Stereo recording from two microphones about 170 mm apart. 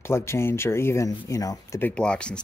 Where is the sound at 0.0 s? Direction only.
15° left (ahead or behind).